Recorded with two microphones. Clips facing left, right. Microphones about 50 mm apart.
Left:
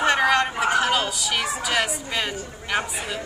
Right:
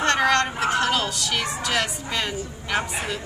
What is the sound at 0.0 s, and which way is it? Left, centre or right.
A woman's voice, centre.